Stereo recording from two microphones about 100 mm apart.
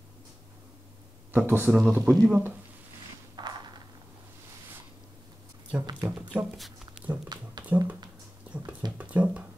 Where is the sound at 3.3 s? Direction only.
45° right (ahead or behind).